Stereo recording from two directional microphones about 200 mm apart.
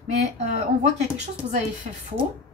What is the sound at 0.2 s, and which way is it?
Speech, 35° right (ahead or behind).